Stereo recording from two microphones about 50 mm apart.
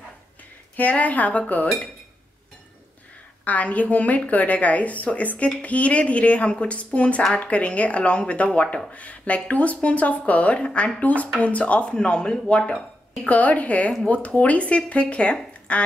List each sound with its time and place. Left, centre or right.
0.7 s a woman's voice: left
3.4 s a woman's voice: left